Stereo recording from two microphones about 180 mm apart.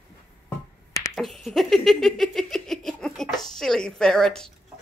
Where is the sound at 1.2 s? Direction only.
Centre (ahead or behind).